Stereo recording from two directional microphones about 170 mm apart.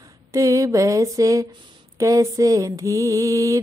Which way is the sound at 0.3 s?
20° right (ahead or behind).